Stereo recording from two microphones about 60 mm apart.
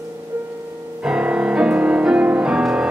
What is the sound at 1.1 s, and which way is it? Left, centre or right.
Music, centre.